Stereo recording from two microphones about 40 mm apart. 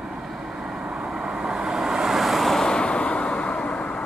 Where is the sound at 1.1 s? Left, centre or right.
Centre.